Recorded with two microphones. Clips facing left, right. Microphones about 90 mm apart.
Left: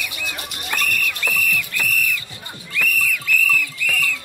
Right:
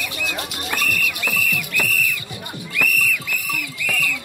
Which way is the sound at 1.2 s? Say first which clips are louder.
Left 1 dB; 20° right (ahead or behind).